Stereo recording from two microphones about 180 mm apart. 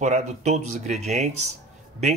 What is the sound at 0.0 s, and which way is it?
Speech, 40° right (ahead or behind).